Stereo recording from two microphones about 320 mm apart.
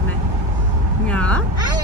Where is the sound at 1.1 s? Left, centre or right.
Centre.